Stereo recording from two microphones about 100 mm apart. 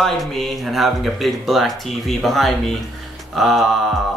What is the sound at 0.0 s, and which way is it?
Speech, centre (ahead or behind).